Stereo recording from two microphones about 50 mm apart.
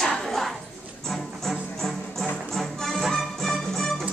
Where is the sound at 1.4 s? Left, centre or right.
Centre.